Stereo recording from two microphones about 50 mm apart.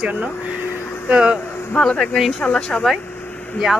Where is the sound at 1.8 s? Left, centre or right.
Centre.